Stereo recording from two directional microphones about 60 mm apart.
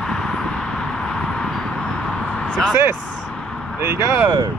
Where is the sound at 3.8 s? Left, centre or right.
Right.